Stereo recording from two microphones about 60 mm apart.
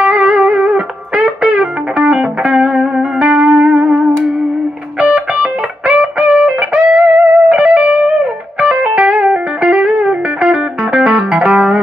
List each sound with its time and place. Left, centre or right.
0.0 s music: centre